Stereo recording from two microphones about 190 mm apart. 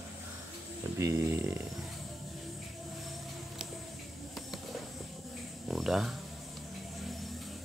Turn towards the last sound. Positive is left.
turn(degrees=0)  # may be behind; listen again after turning